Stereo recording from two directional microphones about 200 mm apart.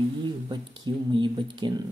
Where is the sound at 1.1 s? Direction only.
20° right (ahead or behind).